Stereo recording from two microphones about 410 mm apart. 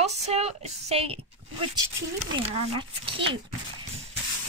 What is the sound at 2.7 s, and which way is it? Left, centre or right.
Speech, centre.